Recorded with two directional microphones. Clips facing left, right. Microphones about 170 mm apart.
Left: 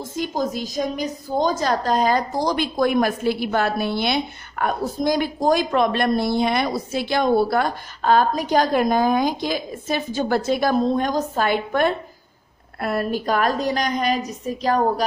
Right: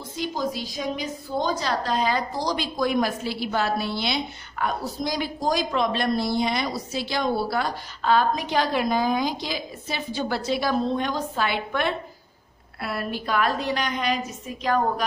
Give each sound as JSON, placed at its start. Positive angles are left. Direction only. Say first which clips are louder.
{"t": 0.1, "sound": "a woman's voice", "louder": "left 3 dB", "side_deg": 45}